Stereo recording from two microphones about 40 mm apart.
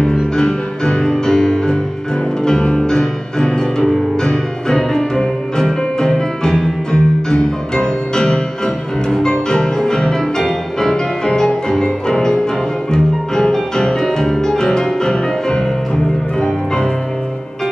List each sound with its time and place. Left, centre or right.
0.4 s music: centre